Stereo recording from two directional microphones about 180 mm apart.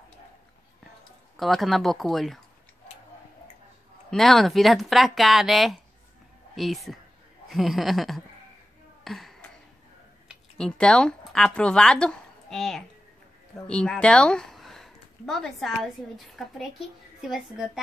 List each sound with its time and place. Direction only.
1.3 s speech: centre (ahead or behind)
4.1 s speech: centre (ahead or behind)
9.0 s a sound: centre (ahead or behind)
10.2 s speech: 5° left (ahead or behind)